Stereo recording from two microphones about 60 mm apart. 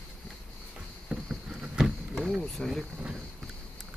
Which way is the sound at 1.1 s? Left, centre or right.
Centre.